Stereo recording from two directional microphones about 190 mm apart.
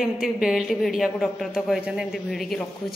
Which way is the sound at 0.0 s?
Centre (ahead or behind).